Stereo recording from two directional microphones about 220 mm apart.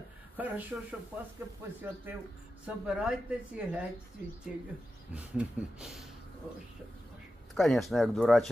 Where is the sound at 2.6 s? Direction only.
5° right (ahead or behind).